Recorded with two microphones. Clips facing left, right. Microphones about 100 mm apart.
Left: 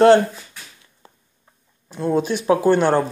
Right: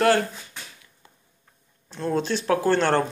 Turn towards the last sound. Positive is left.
turn(degrees=10)  # may be behind; listen again after turning